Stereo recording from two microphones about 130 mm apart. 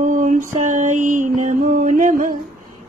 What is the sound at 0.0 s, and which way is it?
Mantra, 75° right (ahead or behind).